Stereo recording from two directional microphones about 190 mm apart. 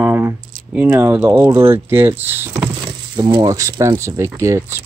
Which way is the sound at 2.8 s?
20° right (ahead or behind).